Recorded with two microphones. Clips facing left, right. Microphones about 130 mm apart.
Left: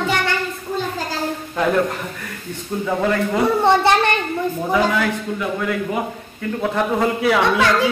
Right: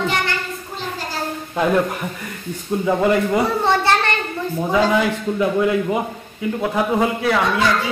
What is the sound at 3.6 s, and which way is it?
Speech, 15° left (ahead or behind).